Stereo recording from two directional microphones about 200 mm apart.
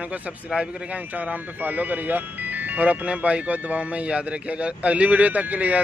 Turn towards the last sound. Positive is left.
turn(degrees=-5)  # may be behind; listen again after turning